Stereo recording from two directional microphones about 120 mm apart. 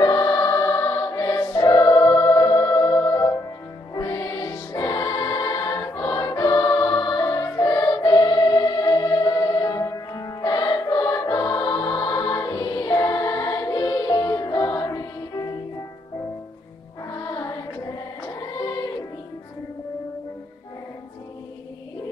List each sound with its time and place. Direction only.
0.0 s music: 30° left (ahead or behind)
17.1 s music: 30° left (ahead or behind)
18.6 s music: 35° left (ahead or behind)